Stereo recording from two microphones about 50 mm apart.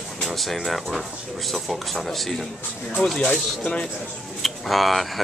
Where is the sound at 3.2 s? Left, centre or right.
Centre.